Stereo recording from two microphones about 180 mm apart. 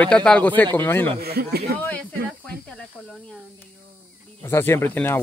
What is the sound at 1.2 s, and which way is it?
Speech, 60° right (ahead or behind).